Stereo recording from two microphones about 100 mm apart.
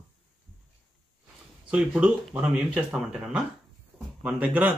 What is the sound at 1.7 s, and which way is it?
Speech, 10° right (ahead or behind).